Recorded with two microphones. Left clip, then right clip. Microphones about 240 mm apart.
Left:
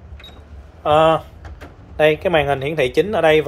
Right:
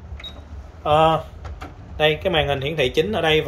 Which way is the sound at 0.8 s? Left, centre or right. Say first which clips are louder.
Left 3 dB; centre.